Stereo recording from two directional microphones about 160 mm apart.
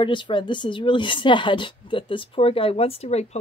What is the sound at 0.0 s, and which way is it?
A woman's voice, 30° left (ahead or behind).